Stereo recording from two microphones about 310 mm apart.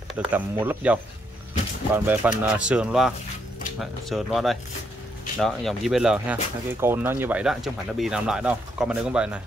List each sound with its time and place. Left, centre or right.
0.1 s speech: centre
2.0 s speech: centre